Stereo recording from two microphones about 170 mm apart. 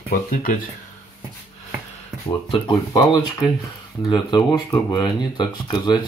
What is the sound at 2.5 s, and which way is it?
Speech, 25° left (ahead or behind).